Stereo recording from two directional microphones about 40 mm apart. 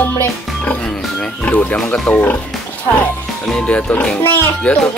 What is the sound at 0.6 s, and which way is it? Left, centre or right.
Speech, left.